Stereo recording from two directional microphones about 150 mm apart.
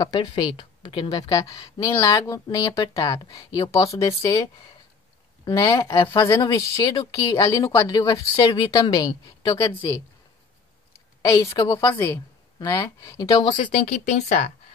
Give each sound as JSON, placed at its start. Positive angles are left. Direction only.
{"t": 0.0, "sound": "a woman's voice", "side_deg": 30}
{"t": 11.2, "sound": "speech", "side_deg": 20}
{"t": 13.6, "sound": "speech", "side_deg": 55}